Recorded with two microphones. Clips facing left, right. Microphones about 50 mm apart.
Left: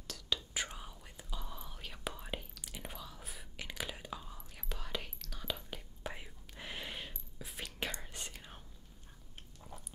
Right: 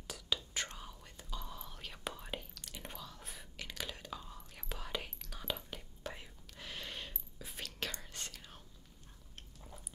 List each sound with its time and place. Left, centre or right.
0.0 s whispering: centre
0.6 s whispering: centre
3.5 s whispering: centre
6.0 s whispering: centre
7.8 s whispering: centre